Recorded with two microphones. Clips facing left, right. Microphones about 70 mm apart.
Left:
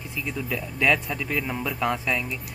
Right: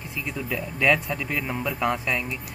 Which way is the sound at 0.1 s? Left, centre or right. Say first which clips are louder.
Even; centre.